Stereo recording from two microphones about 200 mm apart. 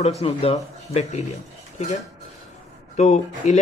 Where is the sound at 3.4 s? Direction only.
35° left (ahead or behind).